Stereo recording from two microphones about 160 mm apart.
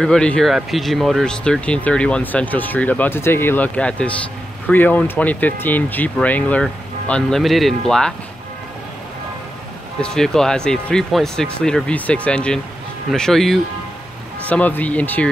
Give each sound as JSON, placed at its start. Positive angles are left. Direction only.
{"t": 0.0, "sound": "speech", "side_deg": 5}
{"t": 10.0, "sound": "speech", "side_deg": 5}